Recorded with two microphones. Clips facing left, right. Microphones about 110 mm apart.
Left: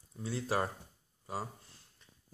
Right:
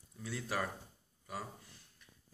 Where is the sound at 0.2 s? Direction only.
30° left (ahead or behind).